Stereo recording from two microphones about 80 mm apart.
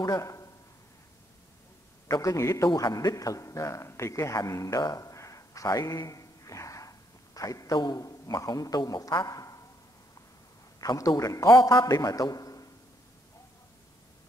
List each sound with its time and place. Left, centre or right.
0.0 s a man's voice: left
2.0 s a man's voice: left
2.8 s a man's voice: left
9.3 s a sound: left
10.8 s a man's voice: left